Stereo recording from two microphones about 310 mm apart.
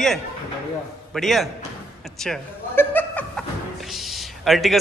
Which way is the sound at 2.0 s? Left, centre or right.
Centre.